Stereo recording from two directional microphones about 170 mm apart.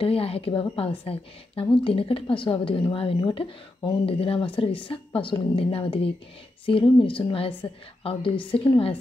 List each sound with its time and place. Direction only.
0.0 s a woman's voice: 35° left (ahead or behind)